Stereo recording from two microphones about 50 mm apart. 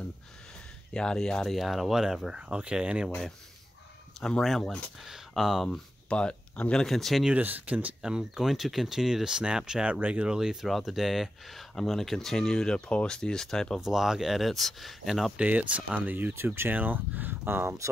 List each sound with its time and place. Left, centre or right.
0.9 s speech: centre
2.3 s speech: right
5.0 s speech: centre
6.0 s speech: left
6.8 s speech: centre
7.3 s speech: right
8.0 s speech: centre
9.8 s speech: right
10.3 s speech: centre
11.7 s speech: centre
13.7 s speech: centre
14.4 s speech: centre
15.4 s speech: right
17.5 s speech: right